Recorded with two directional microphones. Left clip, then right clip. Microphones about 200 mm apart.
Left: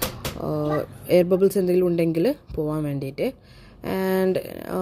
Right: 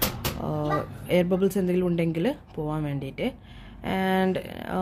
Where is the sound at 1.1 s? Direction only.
30° left (ahead or behind).